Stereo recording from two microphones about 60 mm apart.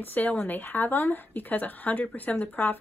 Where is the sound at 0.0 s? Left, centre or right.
Left.